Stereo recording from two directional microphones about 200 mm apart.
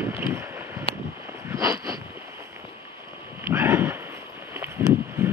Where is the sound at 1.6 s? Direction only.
15° right (ahead or behind).